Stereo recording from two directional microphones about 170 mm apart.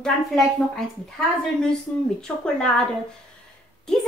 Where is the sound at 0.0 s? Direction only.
Centre (ahead or behind).